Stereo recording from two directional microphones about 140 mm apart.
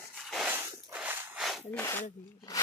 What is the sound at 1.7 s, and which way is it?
Speech, 15° left (ahead or behind).